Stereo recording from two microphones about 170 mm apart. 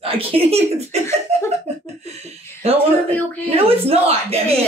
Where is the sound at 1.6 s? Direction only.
40° right (ahead or behind).